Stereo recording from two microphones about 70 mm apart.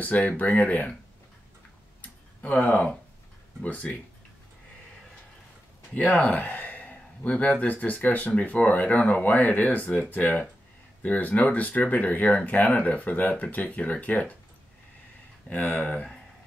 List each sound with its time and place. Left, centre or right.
0.0 s speech: left
2.4 s speech: centre
5.9 s speech: left
15.5 s speech: left